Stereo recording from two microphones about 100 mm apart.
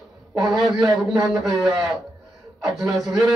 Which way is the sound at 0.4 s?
Centre (ahead or behind).